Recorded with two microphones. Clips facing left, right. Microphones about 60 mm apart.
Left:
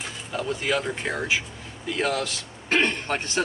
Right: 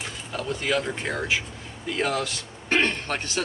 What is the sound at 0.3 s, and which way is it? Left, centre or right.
Speech, centre.